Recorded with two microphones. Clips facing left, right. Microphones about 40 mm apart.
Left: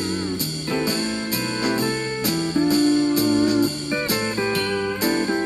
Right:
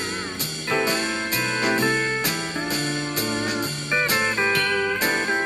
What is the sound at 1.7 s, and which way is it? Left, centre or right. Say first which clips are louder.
Music: right 2 dB; right.